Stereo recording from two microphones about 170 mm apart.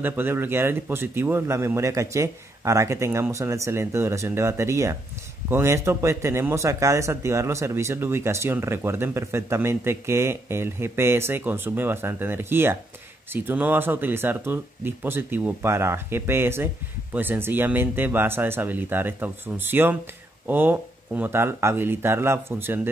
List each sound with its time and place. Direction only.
0.0 s speech: 10° right (ahead or behind)